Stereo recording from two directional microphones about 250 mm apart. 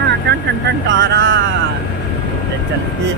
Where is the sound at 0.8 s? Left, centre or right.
Right.